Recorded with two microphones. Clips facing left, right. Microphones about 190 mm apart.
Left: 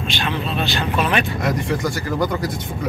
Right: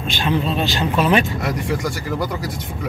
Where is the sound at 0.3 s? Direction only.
35° right (ahead or behind).